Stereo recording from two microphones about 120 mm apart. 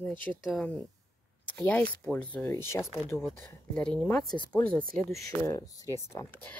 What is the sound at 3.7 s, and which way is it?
Speech, 10° left (ahead or behind).